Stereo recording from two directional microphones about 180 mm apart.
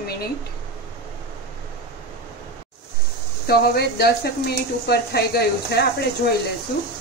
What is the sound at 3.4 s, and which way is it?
Speech, 60° left (ahead or behind).